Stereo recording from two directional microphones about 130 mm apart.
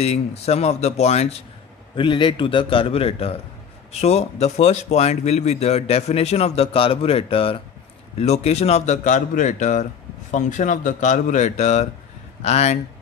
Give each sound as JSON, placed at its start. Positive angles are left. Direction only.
{"t": 0.0, "sound": "speech", "side_deg": 55}
{"t": 2.0, "sound": "speech", "side_deg": 40}